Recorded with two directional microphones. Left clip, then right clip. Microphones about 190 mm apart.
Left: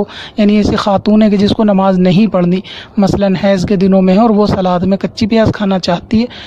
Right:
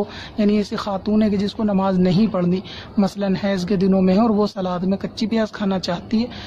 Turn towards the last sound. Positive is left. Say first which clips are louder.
# left 9 dB
turn(degrees=40)  # may be behind; listen again after turning